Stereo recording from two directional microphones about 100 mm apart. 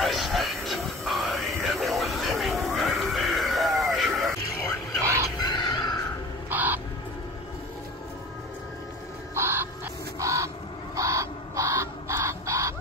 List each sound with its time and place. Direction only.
0.0 s music: centre (ahead or behind)
2.8 s a sound: centre (ahead or behind)
5.0 s a sound: 30° right (ahead or behind)
5.4 s chicken: 45° left (ahead or behind)
6.5 s crow: 20° right (ahead or behind)
9.3 s bird: 25° right (ahead or behind)
11.0 s crow: 30° right (ahead or behind)